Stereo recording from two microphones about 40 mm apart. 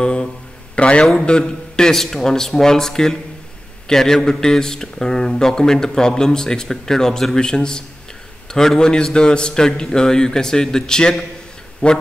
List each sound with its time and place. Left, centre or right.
0.0 s a man's voice: left